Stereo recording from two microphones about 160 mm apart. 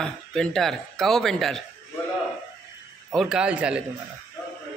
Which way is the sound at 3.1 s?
5° right (ahead or behind).